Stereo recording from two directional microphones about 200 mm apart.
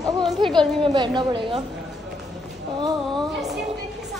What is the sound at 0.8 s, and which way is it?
Speech, 20° right (ahead or behind).